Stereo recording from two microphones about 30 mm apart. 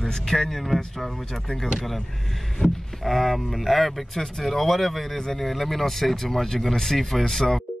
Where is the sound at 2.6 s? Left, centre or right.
Centre.